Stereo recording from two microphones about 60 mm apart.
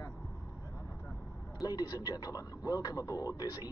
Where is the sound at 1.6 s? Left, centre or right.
Left.